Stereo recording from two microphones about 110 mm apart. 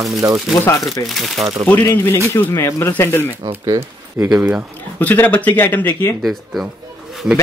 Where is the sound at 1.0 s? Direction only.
Centre (ahead or behind).